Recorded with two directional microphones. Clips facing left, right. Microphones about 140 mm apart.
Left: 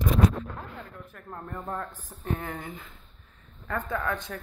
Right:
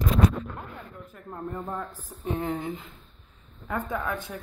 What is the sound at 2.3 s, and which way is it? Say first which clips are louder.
Speech: right 5 dB; 25° right (ahead or behind).